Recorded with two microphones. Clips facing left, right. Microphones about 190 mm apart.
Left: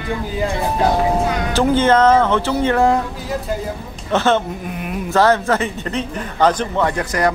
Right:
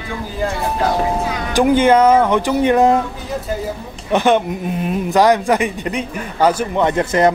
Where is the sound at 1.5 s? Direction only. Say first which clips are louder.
Right 3 dB; 15° right (ahead or behind).